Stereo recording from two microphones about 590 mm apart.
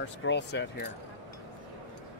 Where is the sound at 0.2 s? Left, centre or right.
Centre.